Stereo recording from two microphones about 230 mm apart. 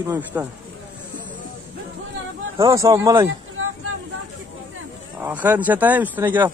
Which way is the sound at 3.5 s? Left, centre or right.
Right.